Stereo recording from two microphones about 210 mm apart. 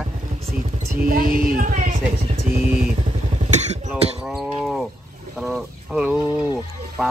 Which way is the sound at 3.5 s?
30° right (ahead or behind).